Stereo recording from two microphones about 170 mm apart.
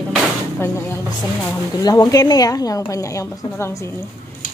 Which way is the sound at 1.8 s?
25° left (ahead or behind).